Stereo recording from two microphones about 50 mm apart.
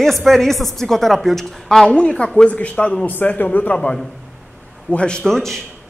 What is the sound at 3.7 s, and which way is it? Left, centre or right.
A woman's voice, centre.